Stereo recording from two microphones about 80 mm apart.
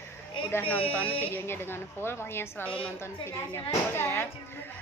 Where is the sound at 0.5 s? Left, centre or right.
Left.